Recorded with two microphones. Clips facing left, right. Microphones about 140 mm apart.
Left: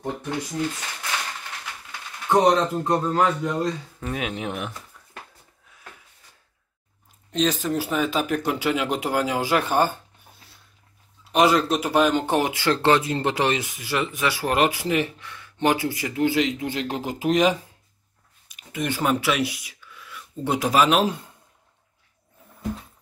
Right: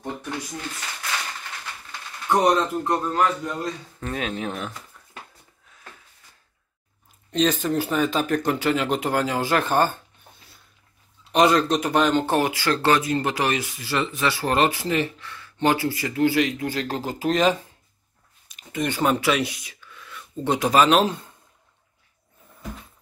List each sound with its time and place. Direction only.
1.9 s speech: 20° left (ahead or behind)
7.2 s speech: centre (ahead or behind)
11.3 s speech: 5° left (ahead or behind)